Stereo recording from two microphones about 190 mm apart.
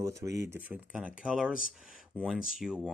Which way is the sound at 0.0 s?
15° right (ahead or behind).